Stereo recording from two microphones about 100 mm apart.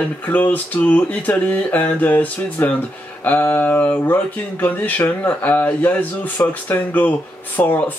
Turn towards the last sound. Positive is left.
turn(degrees=15)  # may be behind; listen again after turning